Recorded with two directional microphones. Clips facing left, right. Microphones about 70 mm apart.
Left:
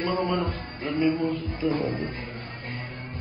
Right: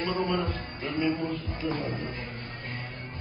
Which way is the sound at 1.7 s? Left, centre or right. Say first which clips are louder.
Left 5 dB; left.